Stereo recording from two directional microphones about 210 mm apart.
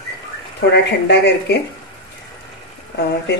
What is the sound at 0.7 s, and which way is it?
Speech, 55° left (ahead or behind).